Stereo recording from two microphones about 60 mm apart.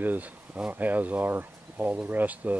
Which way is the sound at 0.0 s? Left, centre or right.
Right.